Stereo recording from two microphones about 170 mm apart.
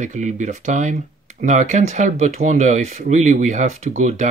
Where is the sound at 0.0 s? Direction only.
45° right (ahead or behind).